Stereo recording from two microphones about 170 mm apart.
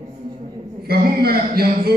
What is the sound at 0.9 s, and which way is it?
A man's voice, 65° right (ahead or behind).